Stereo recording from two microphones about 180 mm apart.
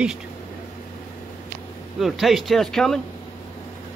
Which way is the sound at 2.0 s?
Centre (ahead or behind).